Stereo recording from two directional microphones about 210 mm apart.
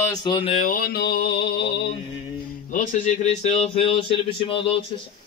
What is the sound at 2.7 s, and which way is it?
Speech, 35° left (ahead or behind).